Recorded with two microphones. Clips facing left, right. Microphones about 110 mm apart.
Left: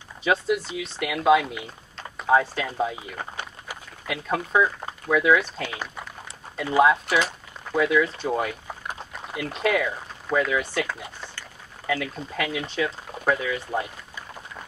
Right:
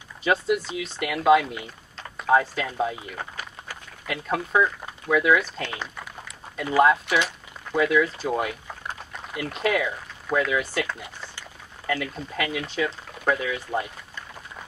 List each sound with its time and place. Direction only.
0.2 s speech: centre (ahead or behind)